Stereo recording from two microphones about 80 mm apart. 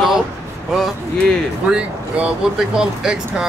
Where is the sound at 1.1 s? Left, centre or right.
Centre.